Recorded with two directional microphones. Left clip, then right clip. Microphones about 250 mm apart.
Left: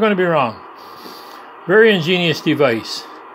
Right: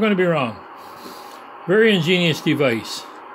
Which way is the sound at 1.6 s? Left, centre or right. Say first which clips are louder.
Left 4 dB; centre.